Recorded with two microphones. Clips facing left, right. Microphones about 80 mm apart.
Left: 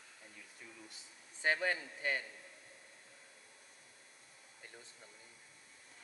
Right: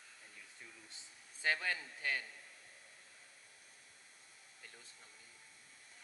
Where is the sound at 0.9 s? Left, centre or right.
Left.